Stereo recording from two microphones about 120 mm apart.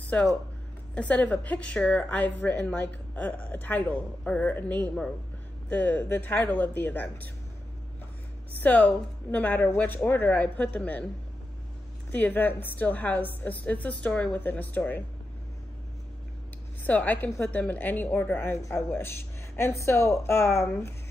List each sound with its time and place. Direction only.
0.9 s a woman's voice: 10° left (ahead or behind)
8.5 s a woman's voice: 15° left (ahead or behind)
12.1 s a woman's voice: 15° left (ahead or behind)
16.8 s a woman's voice: 15° left (ahead or behind)